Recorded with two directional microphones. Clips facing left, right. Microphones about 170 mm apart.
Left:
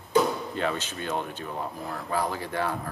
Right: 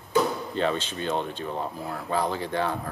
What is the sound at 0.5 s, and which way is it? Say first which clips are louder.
Speech: right 3 dB; 30° right (ahead or behind).